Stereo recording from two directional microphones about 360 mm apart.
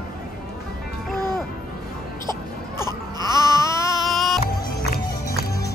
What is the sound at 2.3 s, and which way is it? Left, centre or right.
Baby cry, centre.